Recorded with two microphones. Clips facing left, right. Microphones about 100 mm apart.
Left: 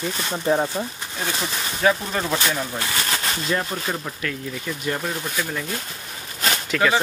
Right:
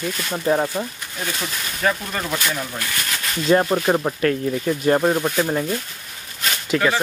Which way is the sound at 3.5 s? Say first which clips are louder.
Right 11 dB; 40° right (ahead or behind).